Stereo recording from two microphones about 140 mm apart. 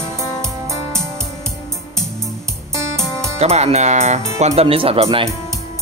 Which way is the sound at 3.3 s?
50° right (ahead or behind).